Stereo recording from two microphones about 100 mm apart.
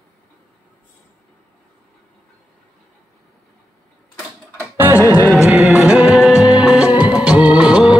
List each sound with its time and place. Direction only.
4.6 s music: 20° right (ahead or behind)